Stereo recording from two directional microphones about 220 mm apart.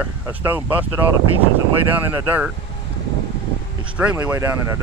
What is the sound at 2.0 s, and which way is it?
Speech, 10° right (ahead or behind).